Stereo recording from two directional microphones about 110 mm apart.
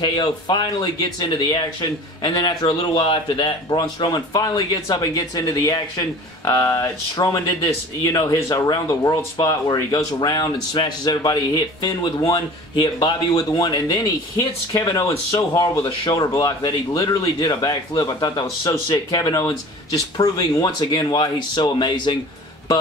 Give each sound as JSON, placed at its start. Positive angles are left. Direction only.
{"t": 0.0, "sound": "speech", "side_deg": 45}
{"t": 3.0, "sound": "a man's voice", "side_deg": 50}
{"t": 3.7, "sound": "speech", "side_deg": 35}